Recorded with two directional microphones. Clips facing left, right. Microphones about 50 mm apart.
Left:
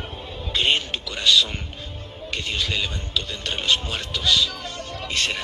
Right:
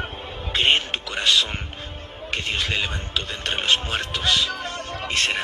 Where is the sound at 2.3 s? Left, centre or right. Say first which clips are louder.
Right 1 dB; right.